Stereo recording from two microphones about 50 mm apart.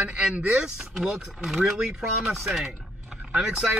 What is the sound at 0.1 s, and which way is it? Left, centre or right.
Speech, centre.